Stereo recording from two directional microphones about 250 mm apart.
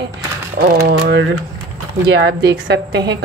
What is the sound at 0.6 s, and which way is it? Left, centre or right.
Mechanisms, right.